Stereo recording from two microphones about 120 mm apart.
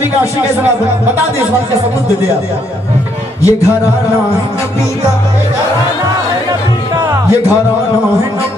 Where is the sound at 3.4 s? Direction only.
25° left (ahead or behind).